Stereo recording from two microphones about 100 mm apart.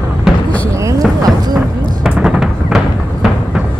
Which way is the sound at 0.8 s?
35° right (ahead or behind).